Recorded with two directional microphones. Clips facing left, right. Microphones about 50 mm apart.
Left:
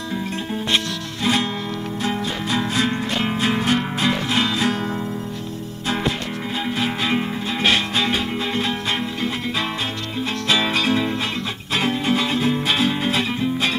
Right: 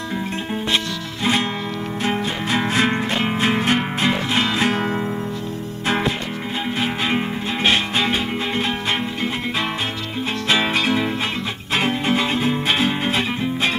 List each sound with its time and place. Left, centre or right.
2.0 s music: right
3.2 s music: right
4.6 s music: right
6.8 s music: centre
10.5 s music: right